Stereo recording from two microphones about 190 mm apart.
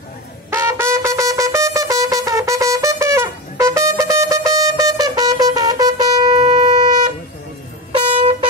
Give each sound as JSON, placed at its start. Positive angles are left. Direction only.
{"t": 0.5, "sound": "music", "side_deg": -15}
{"t": 8.2, "sound": "music", "side_deg": -30}